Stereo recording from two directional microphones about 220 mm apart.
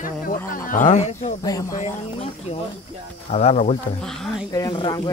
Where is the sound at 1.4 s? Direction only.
15° left (ahead or behind).